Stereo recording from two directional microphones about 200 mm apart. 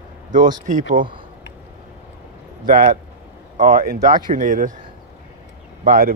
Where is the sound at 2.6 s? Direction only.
45° right (ahead or behind).